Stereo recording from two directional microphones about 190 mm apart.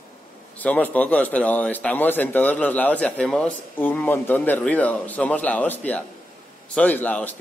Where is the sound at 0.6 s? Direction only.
10° left (ahead or behind).